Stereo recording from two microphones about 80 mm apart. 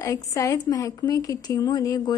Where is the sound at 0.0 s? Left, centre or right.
Left.